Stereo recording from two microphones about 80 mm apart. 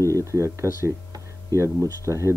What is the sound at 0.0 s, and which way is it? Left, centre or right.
Speech, right.